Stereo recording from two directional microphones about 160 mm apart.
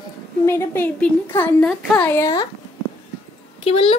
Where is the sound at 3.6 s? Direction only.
35° left (ahead or behind).